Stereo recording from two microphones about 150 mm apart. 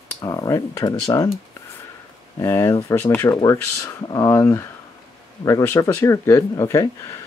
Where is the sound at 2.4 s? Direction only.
20° left (ahead or behind).